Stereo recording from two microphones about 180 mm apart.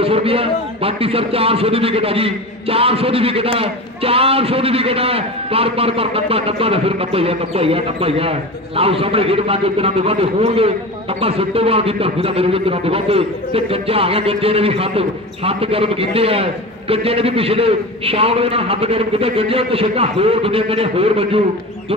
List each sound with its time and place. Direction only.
0.0 s speech: 30° right (ahead or behind)